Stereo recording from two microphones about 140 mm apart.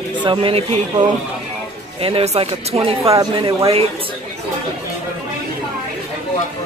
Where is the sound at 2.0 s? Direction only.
45° right (ahead or behind).